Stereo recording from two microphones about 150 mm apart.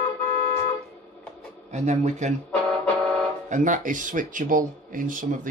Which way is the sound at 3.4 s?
55° right (ahead or behind).